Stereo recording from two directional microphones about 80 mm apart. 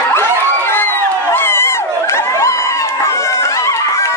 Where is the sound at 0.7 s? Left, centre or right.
Left.